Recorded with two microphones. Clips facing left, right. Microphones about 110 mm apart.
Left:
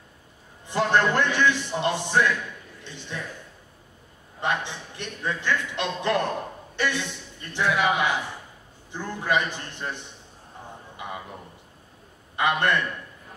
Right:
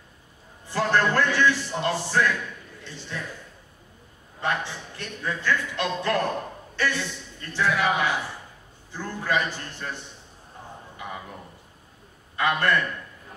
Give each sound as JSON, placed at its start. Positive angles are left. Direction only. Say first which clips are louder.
{"t": 0.7, "sound": "a man's voice", "louder": "left 1 dB", "side_deg": 20}
{"t": 4.4, "sound": "a man's voice", "louder": "even", "side_deg": 20}
{"t": 12.4, "sound": "a man's voice", "louder": "even", "side_deg": 20}